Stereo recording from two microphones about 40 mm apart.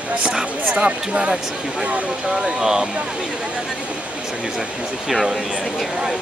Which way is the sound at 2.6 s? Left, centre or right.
Centre.